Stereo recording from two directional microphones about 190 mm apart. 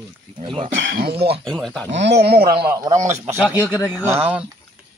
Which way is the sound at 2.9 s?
40° right (ahead or behind).